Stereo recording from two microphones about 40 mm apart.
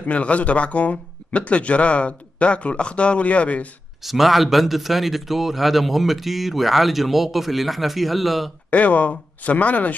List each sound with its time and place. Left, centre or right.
0.0 s speech: left
4.0 s speech: centre
8.6 s speech: left